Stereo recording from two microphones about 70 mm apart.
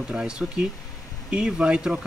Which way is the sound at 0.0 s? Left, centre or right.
Centre.